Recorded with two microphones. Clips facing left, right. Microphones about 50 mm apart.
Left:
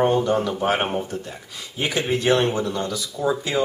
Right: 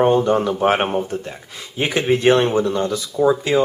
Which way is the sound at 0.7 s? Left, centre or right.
Centre.